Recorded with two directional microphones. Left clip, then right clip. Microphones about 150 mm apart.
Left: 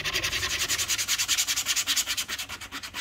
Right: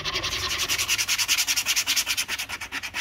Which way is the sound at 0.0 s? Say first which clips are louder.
Right 1 dB; 15° left (ahead or behind).